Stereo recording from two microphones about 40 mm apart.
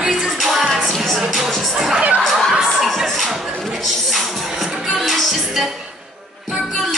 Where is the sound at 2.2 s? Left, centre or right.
Centre.